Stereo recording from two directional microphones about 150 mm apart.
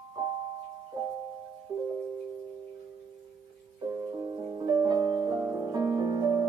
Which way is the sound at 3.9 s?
20° right (ahead or behind).